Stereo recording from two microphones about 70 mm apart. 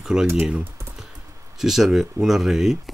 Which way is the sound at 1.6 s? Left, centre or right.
Centre.